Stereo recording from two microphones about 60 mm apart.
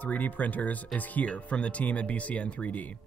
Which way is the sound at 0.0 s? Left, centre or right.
Left.